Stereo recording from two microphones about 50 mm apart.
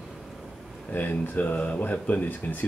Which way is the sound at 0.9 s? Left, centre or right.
Left.